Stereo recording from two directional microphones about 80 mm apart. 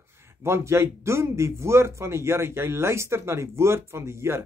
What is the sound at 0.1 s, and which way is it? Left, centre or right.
Speech, right.